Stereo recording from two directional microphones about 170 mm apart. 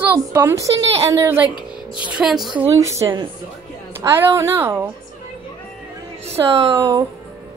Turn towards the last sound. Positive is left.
turn(degrees=-20)  # may be behind; listen again after turning